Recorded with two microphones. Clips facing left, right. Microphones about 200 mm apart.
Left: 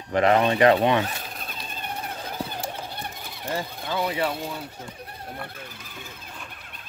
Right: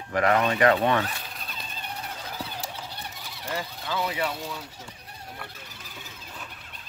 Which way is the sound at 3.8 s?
55° left (ahead or behind).